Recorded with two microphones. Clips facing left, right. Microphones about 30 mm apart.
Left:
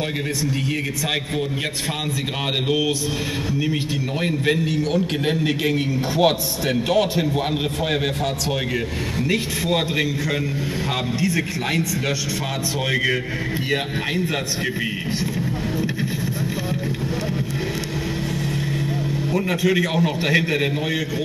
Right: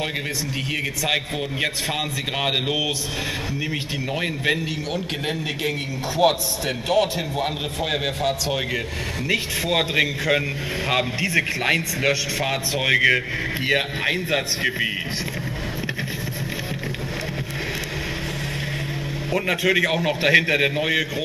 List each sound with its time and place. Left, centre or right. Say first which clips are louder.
4.2 s a man's voice: left 3 dB; centre
5.2 s a man's voice: left 4 dB; centre
9.9 s a man's voice: right 2 dB; centre
19.3 s a man's voice: right 1 dB; centre